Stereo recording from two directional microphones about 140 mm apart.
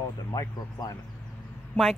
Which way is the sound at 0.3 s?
25° left (ahead or behind).